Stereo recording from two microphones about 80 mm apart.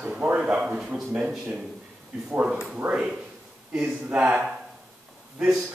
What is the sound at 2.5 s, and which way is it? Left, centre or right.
Speech, centre.